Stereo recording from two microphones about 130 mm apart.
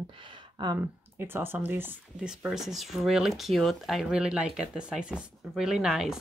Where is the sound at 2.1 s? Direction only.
5° right (ahead or behind).